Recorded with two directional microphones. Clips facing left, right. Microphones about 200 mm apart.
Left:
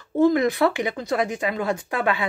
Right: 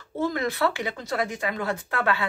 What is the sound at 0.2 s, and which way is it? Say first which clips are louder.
Speech: left 7 dB; 15° left (ahead or behind).